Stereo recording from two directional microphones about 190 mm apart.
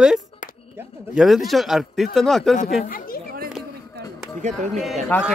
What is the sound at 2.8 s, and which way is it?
Speech, 50° left (ahead or behind).